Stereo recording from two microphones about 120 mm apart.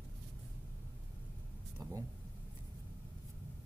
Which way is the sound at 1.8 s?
25° right (ahead or behind).